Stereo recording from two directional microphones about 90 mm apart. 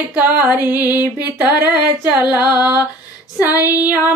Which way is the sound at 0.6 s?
20° right (ahead or behind).